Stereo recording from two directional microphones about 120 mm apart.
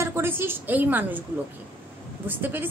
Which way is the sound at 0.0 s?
20° right (ahead or behind).